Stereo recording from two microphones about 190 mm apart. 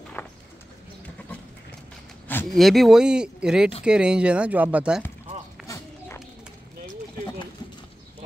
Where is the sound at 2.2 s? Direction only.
5° left (ahead or behind).